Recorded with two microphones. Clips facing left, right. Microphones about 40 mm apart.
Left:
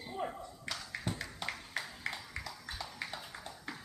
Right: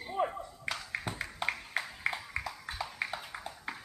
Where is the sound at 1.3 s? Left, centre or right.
Right.